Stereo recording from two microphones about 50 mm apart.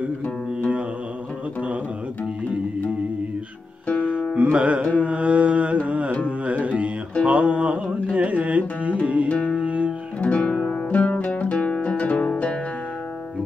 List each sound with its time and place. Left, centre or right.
3.8 s music: left
4.4 s carnatic music: right
6.5 s music: right
7.2 s carnatic music: right
9.0 s music: right
9.3 s music: left
9.6 s music: right
10.2 s music: left